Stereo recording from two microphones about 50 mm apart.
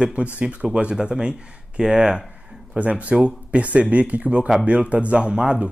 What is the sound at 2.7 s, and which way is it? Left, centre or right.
Speech, right.